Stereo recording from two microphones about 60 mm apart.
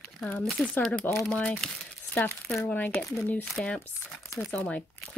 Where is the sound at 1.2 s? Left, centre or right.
Left.